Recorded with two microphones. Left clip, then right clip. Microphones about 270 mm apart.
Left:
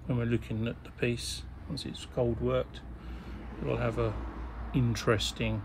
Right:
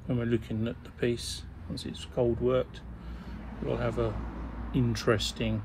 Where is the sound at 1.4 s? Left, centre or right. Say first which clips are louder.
Even; left.